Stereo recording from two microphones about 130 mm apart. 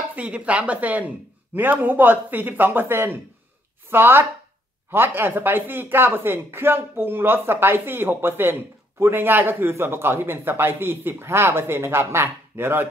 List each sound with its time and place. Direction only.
0.1 s speech: 10° right (ahead or behind)